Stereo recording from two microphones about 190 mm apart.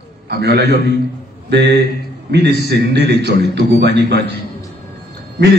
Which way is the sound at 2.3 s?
60° right (ahead or behind).